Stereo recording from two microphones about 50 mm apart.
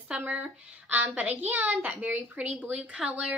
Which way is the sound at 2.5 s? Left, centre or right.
Right.